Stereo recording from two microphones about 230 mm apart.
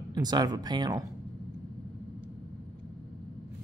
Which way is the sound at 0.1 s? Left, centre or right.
Centre.